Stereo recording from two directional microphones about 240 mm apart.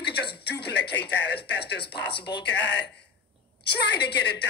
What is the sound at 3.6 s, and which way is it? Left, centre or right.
Speech, left.